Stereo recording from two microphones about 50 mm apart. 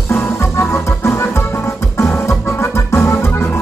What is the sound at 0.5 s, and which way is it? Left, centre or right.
Music, left.